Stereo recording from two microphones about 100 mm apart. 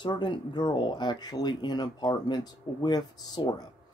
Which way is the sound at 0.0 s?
50° left (ahead or behind).